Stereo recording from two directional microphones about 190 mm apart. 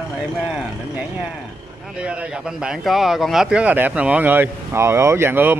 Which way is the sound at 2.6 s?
Centre (ahead or behind).